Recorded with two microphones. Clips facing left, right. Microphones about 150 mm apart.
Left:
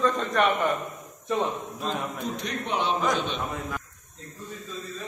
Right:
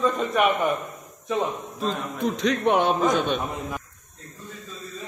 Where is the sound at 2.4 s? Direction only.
75° right (ahead or behind); by 2.9 s 60° right (ahead or behind).